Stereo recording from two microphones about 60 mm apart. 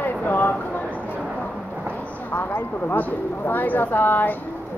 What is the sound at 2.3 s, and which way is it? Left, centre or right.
Speech, left.